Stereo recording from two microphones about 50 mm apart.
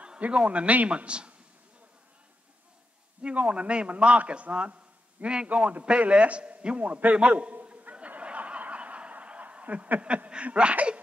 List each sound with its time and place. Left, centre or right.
0.3 s a man's voice: right
3.2 s a man's voice: right
7.2 s snicker: right